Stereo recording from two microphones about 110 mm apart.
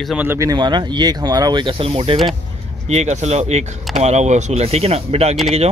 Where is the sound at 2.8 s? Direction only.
85° right; by 5.4 s 70° right (ahead or behind).